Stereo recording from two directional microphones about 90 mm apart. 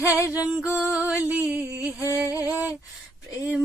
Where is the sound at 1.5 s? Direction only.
20° right (ahead or behind).